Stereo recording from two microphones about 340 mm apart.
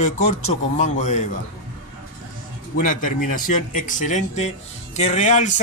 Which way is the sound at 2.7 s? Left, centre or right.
Left.